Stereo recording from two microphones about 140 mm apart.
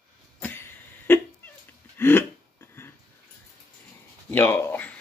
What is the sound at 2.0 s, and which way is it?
Speech, 15° left (ahead or behind).